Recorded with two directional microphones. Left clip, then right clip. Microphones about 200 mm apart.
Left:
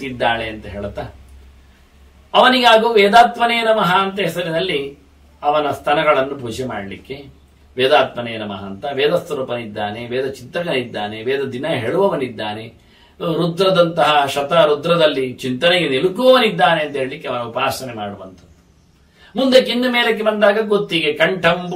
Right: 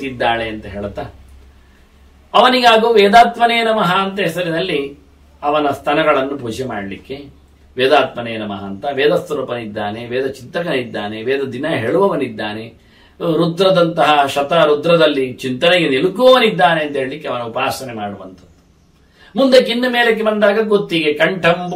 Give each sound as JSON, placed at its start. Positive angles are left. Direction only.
{"t": 0.2, "sound": "speech", "side_deg": 10}
{"t": 2.3, "sound": "speech", "side_deg": 10}
{"t": 13.4, "sound": "speech", "side_deg": 10}
{"t": 19.3, "sound": "speech", "side_deg": 10}